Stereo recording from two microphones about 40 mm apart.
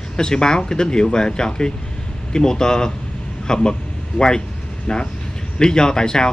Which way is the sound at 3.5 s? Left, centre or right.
Centre.